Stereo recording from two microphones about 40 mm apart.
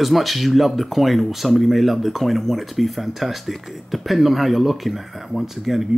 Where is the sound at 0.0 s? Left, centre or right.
Centre.